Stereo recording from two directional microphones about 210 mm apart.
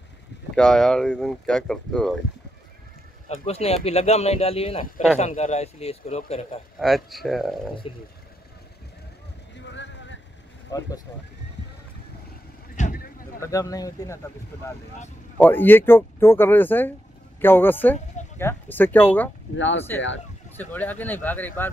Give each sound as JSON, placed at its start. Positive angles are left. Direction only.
{"t": 0.6, "sound": "speech", "side_deg": 5}
{"t": 3.3, "sound": "speech", "side_deg": 30}
{"t": 6.8, "sound": "speech", "side_deg": 0}
{"t": 9.6, "sound": "vehicle", "side_deg": 60}
{"t": 12.7, "sound": "vehicle", "side_deg": 40}
{"t": 13.4, "sound": "speech", "side_deg": 15}
{"t": 15.3, "sound": "speech", "side_deg": 10}
{"t": 19.5, "sound": "speech", "side_deg": 60}
{"t": 20.7, "sound": "speech", "side_deg": 10}